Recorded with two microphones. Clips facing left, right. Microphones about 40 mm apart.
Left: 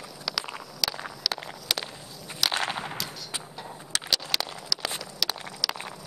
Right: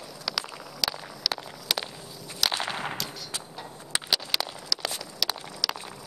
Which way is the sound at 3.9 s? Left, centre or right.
Centre.